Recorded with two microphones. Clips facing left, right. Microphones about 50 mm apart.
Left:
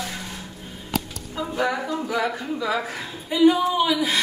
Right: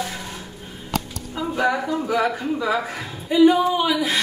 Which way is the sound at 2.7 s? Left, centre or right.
Centre.